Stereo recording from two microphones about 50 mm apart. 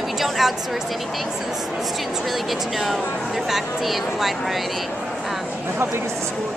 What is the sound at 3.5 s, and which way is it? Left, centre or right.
Speech, centre.